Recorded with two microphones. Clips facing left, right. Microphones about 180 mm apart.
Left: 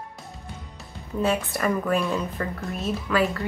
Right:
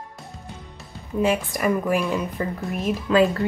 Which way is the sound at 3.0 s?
25° right (ahead or behind).